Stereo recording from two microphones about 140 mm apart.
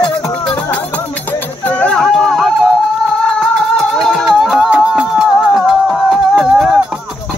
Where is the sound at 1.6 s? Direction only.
10° left (ahead or behind).